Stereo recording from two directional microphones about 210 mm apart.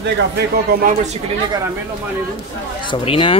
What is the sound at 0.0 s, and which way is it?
Speech, 50° right (ahead or behind).